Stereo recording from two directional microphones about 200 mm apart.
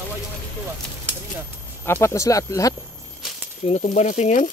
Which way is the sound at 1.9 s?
15° left (ahead or behind).